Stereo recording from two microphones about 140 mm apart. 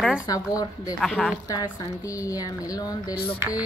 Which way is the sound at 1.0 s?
Centre (ahead or behind).